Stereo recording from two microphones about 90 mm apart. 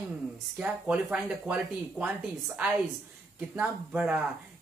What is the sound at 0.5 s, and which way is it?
Speech, 15° right (ahead or behind).